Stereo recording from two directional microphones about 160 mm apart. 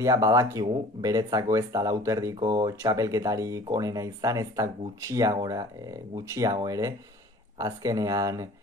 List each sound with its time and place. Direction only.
0.0 s speech: 20° right (ahead or behind)